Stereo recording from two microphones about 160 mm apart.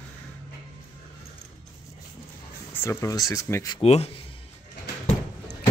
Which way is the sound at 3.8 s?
40° left (ahead or behind).